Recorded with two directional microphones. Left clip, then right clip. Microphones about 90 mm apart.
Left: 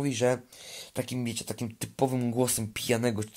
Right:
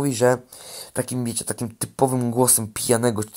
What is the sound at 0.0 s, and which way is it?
Speech, 45° right (ahead or behind).